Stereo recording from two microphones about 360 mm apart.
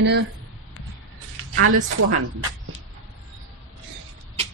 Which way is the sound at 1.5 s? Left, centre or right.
Right.